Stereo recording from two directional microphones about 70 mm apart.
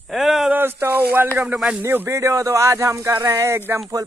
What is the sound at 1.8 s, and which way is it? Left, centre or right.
Speech, right.